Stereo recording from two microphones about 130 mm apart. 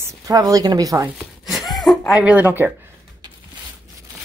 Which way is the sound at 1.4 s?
Centre (ahead or behind).